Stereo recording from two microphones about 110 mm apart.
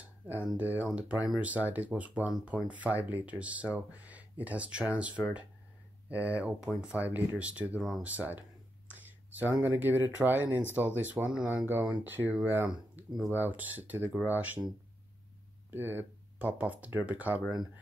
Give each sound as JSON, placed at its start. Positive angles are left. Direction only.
{"t": 0.0, "sound": "a sound", "side_deg": -15}
{"t": 0.6, "sound": "speech", "side_deg": -15}
{"t": 8.1, "sound": "speech", "side_deg": -15}
{"t": 15.7, "sound": "speech", "side_deg": -20}